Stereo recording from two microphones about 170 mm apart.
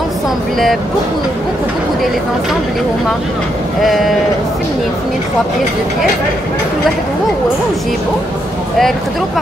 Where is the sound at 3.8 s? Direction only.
Centre (ahead or behind).